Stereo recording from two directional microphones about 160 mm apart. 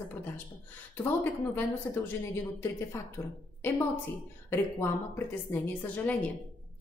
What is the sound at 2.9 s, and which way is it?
Speech, 15° left (ahead or behind).